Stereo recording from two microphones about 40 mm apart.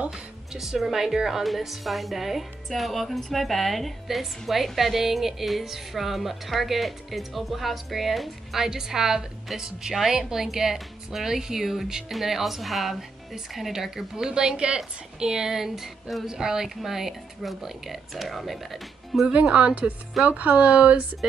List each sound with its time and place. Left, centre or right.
0.1 s a woman's voice: centre
8.6 s speech: centre
16.3 s a woman's voice: centre
19.5 s speech: right